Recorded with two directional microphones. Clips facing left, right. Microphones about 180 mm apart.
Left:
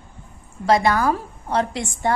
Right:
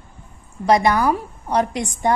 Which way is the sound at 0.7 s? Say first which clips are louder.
Right 2 dB; 20° right (ahead or behind).